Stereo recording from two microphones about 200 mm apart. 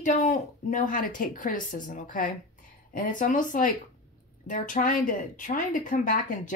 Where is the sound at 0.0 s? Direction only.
40° left (ahead or behind).